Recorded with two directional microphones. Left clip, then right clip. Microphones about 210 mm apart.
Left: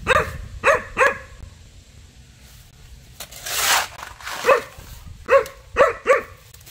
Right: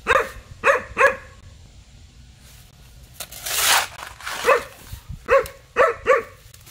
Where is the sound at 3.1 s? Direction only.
20° right (ahead or behind).